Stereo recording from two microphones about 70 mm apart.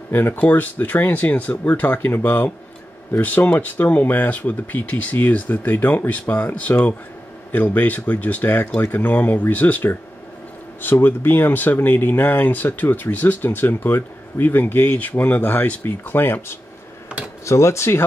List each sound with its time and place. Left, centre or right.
0.1 s speech: left
17.5 s speech: left